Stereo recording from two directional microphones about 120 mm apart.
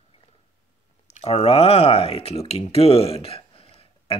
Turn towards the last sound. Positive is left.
turn(degrees=50)  # may be behind; listen again after turning